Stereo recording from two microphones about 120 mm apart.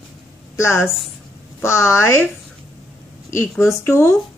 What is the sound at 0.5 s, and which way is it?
A woman's voice, 20° left (ahead or behind).